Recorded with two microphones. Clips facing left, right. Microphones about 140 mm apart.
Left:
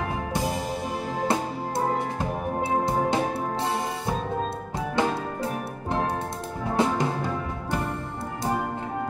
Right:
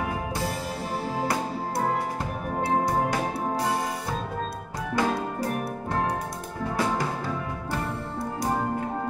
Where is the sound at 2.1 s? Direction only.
25° left (ahead or behind).